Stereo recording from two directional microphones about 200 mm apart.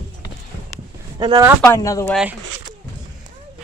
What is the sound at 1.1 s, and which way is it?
Speech, 20° right (ahead or behind).